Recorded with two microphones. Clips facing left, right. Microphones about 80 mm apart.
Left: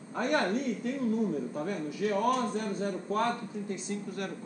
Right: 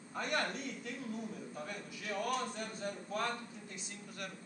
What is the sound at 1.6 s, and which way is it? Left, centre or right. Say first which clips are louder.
Speech: left 13 dB; left.